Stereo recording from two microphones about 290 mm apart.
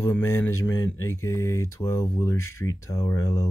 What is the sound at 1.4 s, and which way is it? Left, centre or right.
Speech, centre.